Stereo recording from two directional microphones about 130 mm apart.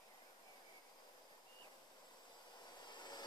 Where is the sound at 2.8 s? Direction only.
35° left (ahead or behind).